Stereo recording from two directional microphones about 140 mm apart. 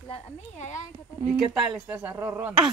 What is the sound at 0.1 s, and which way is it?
Speech, 60° left (ahead or behind).